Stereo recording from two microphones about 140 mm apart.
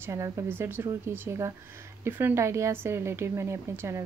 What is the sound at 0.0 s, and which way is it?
A woman's voice, 20° right (ahead or behind).